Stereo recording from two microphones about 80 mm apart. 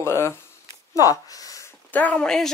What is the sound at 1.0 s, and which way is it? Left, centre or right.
Speech, left.